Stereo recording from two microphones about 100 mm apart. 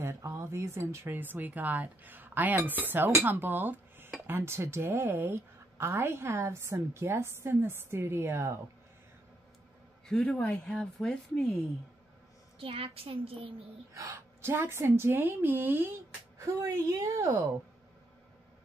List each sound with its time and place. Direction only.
0.0 s a woman's voice: 30° right (ahead or behind)
3.3 s cutlery: 20° right (ahead or behind)
4.3 s a woman's voice: 25° right (ahead or behind)
10.0 s a man's voice: 5° left (ahead or behind)
12.5 s a child's voice: 70° right (ahead or behind)
13.9 s a woman's voice: 30° right (ahead or behind)
16.3 s a woman's voice: 35° right (ahead or behind)